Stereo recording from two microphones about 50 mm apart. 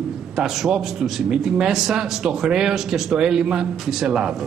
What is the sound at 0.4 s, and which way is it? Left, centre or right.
A man's voice, centre.